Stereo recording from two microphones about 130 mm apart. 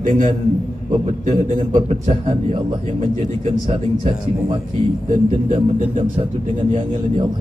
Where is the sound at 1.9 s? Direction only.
40° right (ahead or behind).